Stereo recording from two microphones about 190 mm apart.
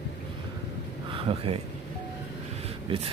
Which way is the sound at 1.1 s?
30° right (ahead or behind).